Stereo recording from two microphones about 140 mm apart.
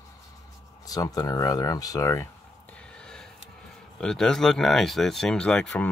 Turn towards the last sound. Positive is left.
turn(degrees=5)  # may be behind; listen again after turning